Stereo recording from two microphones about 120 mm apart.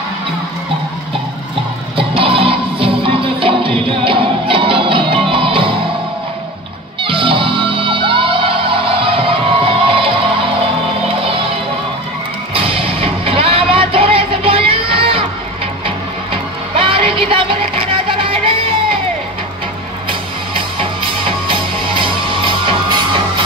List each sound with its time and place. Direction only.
2.0 s music: 50° right (ahead or behind)
7.0 s music: 45° right (ahead or behind)
12.5 s music: 50° right (ahead or behind)
16.7 s music: 50° right (ahead or behind)
20.1 s music: 45° right (ahead or behind)